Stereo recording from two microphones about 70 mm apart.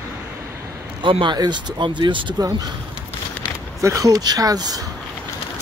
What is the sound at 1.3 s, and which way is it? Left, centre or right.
Speech, right.